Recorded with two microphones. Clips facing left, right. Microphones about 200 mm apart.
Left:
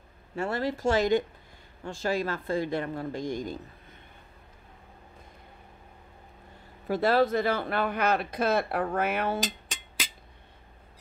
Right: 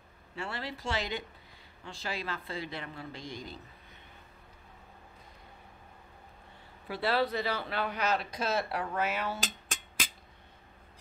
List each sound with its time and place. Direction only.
0.4 s speech: 45° left (ahead or behind)
6.9 s speech: 45° left (ahead or behind)